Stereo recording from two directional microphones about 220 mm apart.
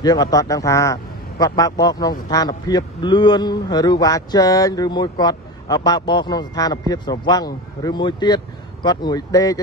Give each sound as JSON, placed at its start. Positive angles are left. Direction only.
{"t": 0.0, "sound": "a man's voice", "side_deg": 15}